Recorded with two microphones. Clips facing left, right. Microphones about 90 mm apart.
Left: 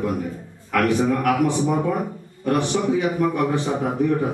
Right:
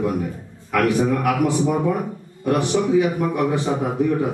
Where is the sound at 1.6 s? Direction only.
Centre (ahead or behind).